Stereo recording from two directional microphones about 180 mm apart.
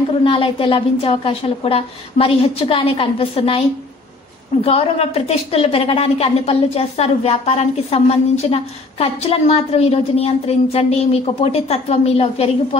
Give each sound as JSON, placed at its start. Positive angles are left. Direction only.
{"t": 0.2, "sound": "a woman's voice", "side_deg": 30}
{"t": 4.6, "sound": "a woman's voice", "side_deg": 35}